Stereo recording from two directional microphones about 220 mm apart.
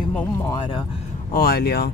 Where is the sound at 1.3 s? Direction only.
45° left (ahead or behind).